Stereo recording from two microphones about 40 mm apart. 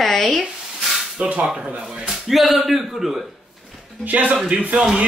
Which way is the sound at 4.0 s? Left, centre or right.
Right.